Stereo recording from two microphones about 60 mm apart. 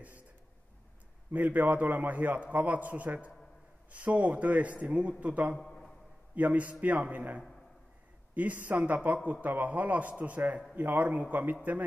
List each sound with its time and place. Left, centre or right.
1.3 s a man's voice: right
5.6 s a sound: centre
6.3 s a man's voice: right